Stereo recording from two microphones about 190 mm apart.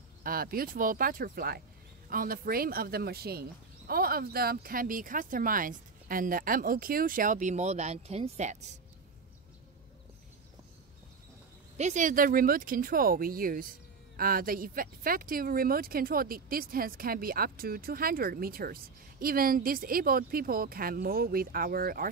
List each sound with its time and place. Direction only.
0.2 s speech: 50° right (ahead or behind)
11.7 s speech: 40° right (ahead or behind)